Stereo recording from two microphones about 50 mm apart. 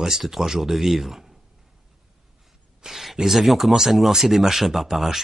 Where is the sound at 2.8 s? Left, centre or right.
Centre.